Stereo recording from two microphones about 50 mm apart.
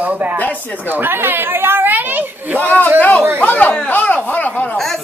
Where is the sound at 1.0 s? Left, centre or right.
Right.